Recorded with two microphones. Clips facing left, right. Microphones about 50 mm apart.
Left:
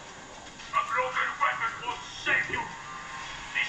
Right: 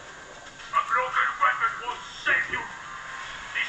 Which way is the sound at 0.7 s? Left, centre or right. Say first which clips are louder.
Right 3 dB; centre.